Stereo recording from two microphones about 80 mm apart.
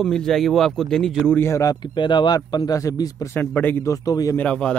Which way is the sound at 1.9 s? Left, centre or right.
Left.